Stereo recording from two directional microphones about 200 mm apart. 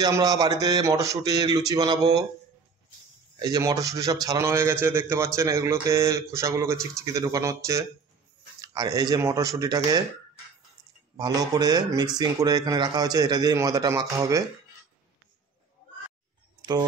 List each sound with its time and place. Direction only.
0.0 s a man's voice: 20° right (ahead or behind)
3.3 s a man's voice: 20° right (ahead or behind)
11.1 s a man's voice: 20° right (ahead or behind)